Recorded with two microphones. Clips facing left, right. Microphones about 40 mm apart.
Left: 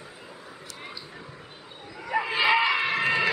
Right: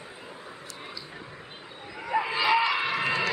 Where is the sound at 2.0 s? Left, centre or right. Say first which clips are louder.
Even; centre.